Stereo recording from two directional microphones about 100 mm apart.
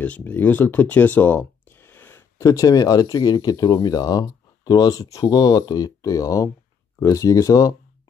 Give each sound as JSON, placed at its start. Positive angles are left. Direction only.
{"t": 0.0, "sound": "speech", "side_deg": 15}
{"t": 2.4, "sound": "speech", "side_deg": 35}